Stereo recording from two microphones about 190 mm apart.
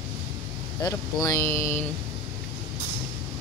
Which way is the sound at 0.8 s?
15° left (ahead or behind).